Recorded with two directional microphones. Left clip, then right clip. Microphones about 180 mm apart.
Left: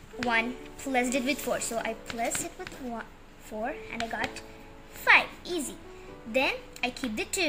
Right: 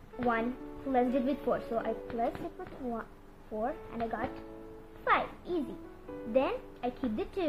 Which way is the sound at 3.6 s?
5° right (ahead or behind).